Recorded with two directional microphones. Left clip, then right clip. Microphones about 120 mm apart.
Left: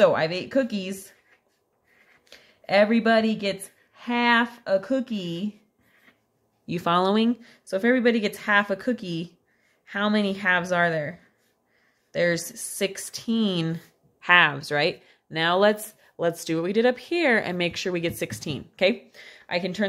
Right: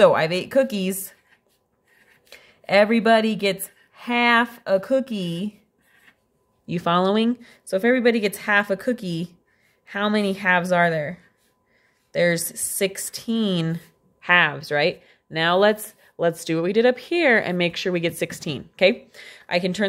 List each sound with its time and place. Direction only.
0.0 s speech: 40° right (ahead or behind)
2.2 s a woman's voice: 35° right (ahead or behind)
6.6 s speech: 15° right (ahead or behind); by 19.8 s 40° right (ahead or behind)